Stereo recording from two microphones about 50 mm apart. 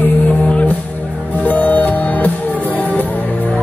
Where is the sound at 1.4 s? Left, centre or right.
Left.